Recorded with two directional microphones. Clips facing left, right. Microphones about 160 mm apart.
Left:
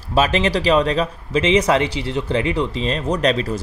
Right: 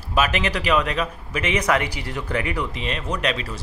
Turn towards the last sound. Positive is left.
turn(degrees=40)  # may be behind; listen again after turning